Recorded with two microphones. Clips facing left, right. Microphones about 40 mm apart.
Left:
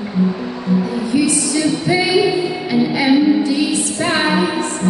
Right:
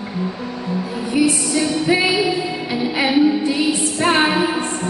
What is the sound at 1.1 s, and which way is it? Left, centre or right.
Music, right.